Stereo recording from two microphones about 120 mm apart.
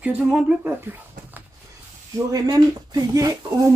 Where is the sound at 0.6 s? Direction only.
20° right (ahead or behind).